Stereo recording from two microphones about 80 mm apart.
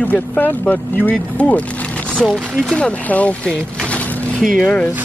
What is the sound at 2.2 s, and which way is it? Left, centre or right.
Speech, centre.